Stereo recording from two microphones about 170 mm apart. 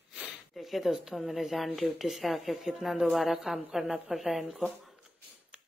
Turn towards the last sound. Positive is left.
turn(degrees=0)  # may be behind; listen again after turning